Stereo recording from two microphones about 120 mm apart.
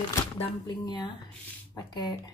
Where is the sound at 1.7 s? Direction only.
35° left (ahead or behind).